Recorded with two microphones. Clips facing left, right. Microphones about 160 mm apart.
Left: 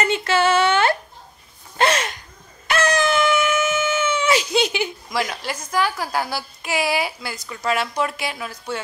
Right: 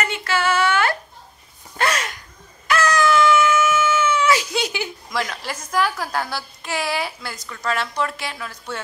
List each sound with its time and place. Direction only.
0.0 s a sound: 25° left (ahead or behind)
1.8 s gasp: 25° left (ahead or behind)
2.7 s dog: 25° left (ahead or behind)
5.1 s a woman's voice: 10° left (ahead or behind)
5.4 s a woman's voice: centre (ahead or behind)